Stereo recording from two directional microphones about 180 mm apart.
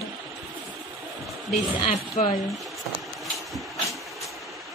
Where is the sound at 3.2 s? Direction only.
Centre (ahead or behind).